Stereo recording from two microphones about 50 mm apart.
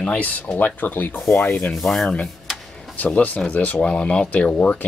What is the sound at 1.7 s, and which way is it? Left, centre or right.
Speech, centre.